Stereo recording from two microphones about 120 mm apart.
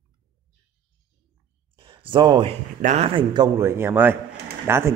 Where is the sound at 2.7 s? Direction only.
80° right.